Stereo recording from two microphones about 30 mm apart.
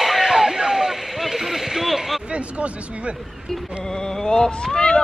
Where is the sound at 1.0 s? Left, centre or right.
Centre.